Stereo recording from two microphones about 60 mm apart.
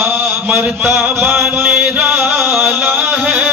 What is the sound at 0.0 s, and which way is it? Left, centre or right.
Mantra, right.